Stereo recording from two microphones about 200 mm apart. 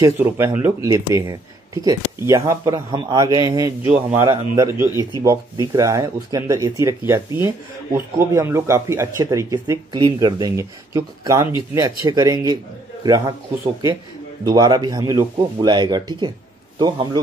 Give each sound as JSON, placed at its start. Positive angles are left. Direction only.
{"t": 0.0, "sound": "speech", "side_deg": -10}
{"t": 14.4, "sound": "a man's voice", "side_deg": -20}